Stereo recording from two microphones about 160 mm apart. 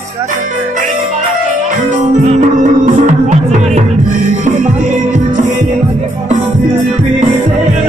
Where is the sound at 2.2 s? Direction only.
50° right (ahead or behind).